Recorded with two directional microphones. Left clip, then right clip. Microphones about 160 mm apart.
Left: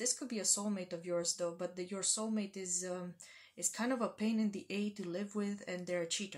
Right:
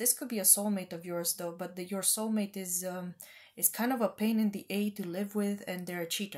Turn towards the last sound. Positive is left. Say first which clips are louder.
# right 1 dB
turn(degrees=-45)  # may be behind; listen again after turning